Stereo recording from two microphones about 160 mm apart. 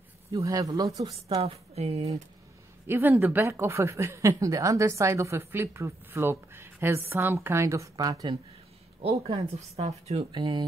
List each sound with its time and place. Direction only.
0.3 s speech: 20° right (ahead or behind)
1.3 s speech: 40° right (ahead or behind)
2.9 s a woman's voice: 10° right (ahead or behind)
9.3 s speech: 40° right (ahead or behind)